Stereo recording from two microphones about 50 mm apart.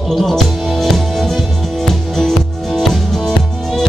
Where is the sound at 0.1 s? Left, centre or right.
Centre.